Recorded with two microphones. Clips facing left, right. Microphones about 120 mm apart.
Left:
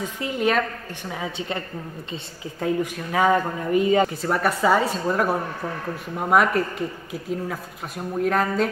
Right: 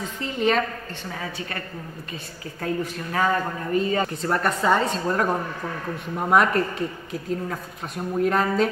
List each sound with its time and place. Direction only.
0.0 s speech: 5° left (ahead or behind)
2.6 s a woman's voice: 15° left (ahead or behind)
4.1 s speech: 5° left (ahead or behind)